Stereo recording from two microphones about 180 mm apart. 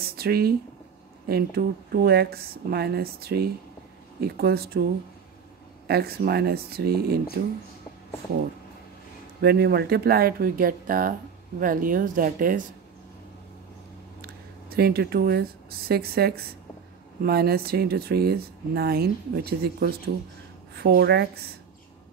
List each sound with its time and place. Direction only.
0.0 s speech: 60° right (ahead or behind)
5.9 s speech: 60° right (ahead or behind)
9.4 s speech: 65° right (ahead or behind)
14.2 s a sound: 60° right (ahead or behind)
15.9 s speech: 60° right (ahead or behind)